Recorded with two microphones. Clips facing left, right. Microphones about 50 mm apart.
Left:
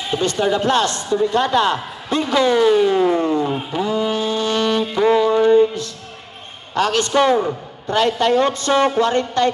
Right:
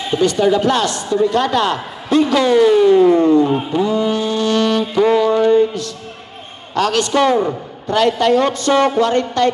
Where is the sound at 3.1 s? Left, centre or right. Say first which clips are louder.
Right 6 dB; centre.